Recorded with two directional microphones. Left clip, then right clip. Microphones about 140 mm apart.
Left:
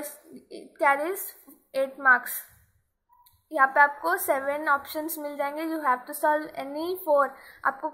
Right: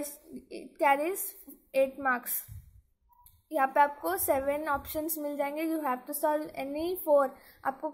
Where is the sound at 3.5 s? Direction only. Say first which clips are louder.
Left 5 dB; 40° right (ahead or behind).